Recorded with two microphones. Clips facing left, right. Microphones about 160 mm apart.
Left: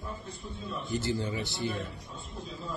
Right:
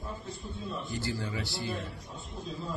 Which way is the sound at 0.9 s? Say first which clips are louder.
Left 7 dB; 20° left (ahead or behind).